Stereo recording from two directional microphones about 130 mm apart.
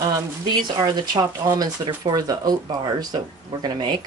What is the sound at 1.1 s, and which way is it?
Speech, 30° right (ahead or behind).